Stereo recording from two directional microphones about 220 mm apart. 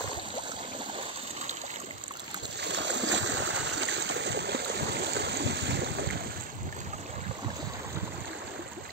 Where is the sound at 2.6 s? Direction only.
55° right (ahead or behind).